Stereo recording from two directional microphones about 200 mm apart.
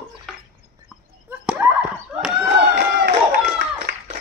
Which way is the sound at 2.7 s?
50° right (ahead or behind).